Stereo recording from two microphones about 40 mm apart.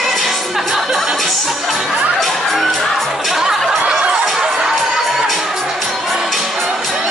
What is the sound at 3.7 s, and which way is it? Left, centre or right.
Snicker, centre.